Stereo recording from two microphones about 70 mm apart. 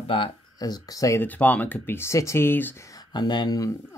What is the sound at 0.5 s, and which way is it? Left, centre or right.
Speech, left.